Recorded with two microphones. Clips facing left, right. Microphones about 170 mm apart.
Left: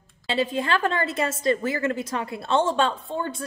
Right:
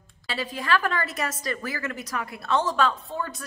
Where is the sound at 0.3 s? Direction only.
25° left (ahead or behind).